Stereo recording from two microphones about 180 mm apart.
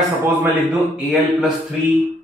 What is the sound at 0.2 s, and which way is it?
Speech, 10° right (ahead or behind).